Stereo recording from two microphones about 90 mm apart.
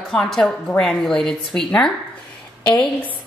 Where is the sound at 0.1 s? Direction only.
5° left (ahead or behind).